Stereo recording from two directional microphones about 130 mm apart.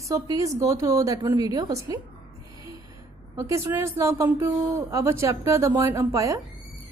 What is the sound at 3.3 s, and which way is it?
Speech, 20° right (ahead or behind).